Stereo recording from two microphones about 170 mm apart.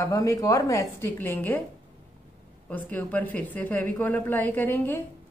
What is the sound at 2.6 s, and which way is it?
A woman's voice, 10° left (ahead or behind).